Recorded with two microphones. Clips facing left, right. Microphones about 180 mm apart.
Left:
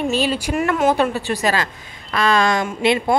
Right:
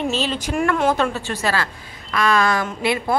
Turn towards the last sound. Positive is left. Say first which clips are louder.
# left 4 dB
turn(degrees=25)  # may be behind; listen again after turning